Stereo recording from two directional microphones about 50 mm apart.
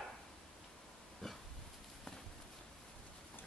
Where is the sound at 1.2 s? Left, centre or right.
Centre.